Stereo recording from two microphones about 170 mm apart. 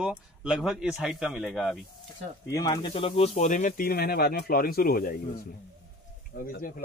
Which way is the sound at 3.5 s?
50° left (ahead or behind).